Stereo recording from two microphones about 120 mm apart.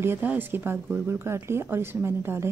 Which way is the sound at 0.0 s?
15° right (ahead or behind).